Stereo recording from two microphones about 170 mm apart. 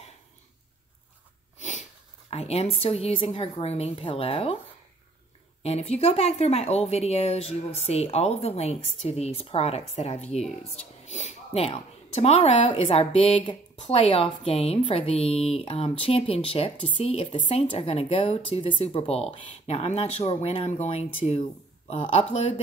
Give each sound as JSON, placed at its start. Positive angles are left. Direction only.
{"t": 1.6, "sound": "speech", "side_deg": 45}
{"t": 5.6, "sound": "speech", "side_deg": 40}